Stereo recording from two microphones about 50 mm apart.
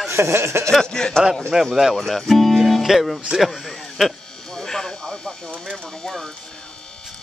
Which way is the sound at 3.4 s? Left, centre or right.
Centre.